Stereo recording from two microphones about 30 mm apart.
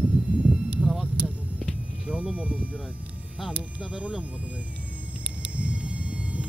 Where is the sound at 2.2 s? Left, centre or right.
Right.